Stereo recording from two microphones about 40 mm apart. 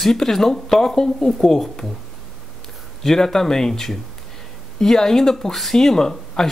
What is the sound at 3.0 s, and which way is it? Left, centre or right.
Speech, centre.